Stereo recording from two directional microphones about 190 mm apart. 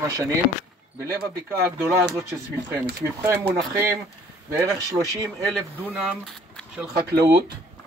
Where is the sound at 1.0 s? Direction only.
15° right (ahead or behind).